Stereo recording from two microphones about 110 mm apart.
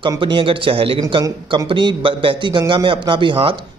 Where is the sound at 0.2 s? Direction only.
50° right (ahead or behind).